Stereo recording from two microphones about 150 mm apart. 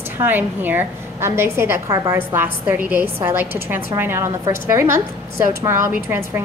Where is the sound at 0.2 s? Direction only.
10° right (ahead or behind).